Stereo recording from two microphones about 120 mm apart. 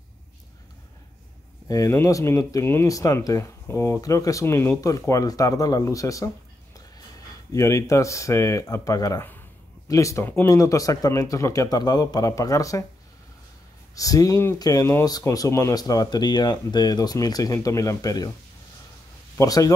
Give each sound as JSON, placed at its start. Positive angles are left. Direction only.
{"t": 1.7, "sound": "speech", "side_deg": 30}
{"t": 13.9, "sound": "speech", "side_deg": 30}
{"t": 19.3, "sound": "speech", "side_deg": 30}